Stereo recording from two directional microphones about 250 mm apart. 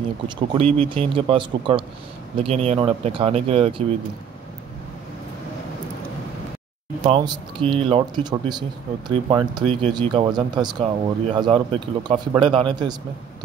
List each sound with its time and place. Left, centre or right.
0.6 s speech: right
7.1 s speech: centre